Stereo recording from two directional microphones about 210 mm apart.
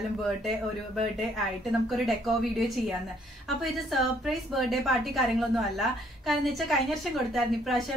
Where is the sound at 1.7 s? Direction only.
Centre (ahead or behind).